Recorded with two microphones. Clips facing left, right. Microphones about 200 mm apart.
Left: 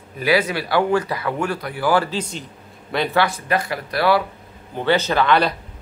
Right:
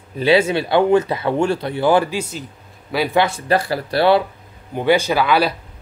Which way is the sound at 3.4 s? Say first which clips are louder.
Right 4 dB; 35° right (ahead or behind).